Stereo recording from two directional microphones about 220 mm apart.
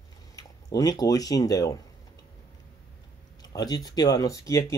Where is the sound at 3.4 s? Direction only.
20° left (ahead or behind).